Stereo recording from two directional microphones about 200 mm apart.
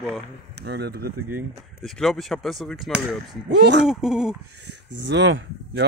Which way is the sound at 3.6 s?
60° right (ahead or behind).